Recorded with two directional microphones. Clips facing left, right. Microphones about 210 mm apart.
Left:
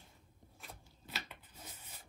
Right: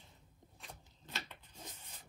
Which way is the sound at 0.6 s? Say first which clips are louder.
Even; 5° left (ahead or behind).